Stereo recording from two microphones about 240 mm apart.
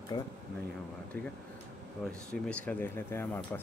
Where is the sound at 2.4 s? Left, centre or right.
Centre.